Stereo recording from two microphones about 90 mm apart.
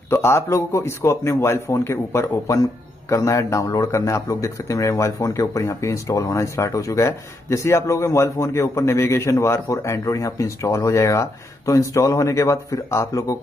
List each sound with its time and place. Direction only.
0.1 s speech: 30° left (ahead or behind)